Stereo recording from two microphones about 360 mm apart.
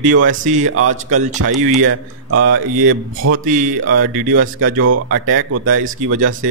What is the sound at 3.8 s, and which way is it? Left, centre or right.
Speech, right.